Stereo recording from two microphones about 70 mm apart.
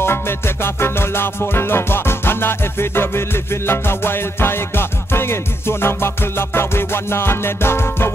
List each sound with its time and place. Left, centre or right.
0.0 s music: left